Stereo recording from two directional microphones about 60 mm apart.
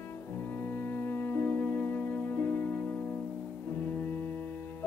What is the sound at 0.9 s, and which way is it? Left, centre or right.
Music, left.